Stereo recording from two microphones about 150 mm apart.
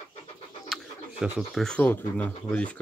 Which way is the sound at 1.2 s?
Centre (ahead or behind).